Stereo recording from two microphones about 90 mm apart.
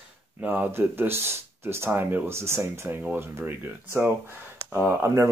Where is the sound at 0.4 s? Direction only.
20° right (ahead or behind).